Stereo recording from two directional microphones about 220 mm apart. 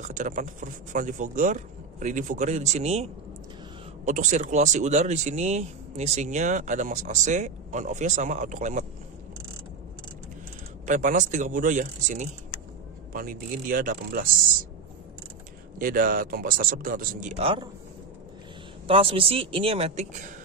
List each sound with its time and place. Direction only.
0.1 s speech: 35° right (ahead or behind)
10.9 s speech: 35° right (ahead or behind)
15.8 s speech: 40° right (ahead or behind)
18.9 s speech: 25° right (ahead or behind)